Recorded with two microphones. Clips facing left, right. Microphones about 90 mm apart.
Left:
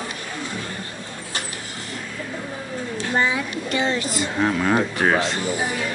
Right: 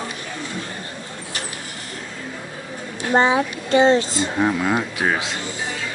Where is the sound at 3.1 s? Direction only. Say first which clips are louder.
Right 6 dB; 35° right (ahead or behind).